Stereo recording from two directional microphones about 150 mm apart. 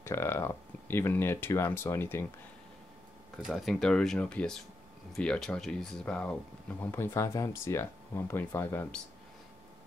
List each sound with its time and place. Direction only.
0.0 s speech: 15° left (ahead or behind)
3.4 s speech: centre (ahead or behind)